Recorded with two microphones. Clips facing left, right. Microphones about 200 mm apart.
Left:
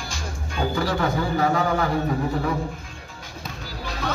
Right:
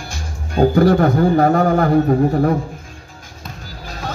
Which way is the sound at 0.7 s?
55° right (ahead or behind).